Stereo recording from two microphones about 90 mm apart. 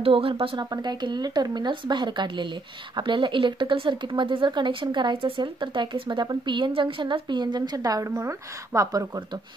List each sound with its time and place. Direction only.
0.0 s speech: 90° right; by 9.0 s 35° right (ahead or behind)